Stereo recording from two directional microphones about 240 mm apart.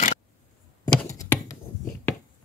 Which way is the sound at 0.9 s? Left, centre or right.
Centre.